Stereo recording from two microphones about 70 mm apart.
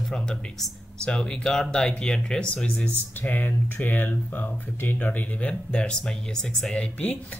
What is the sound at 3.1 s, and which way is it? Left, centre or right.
Speech, left.